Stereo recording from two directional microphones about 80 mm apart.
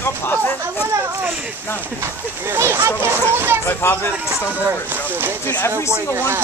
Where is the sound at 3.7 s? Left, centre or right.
Left.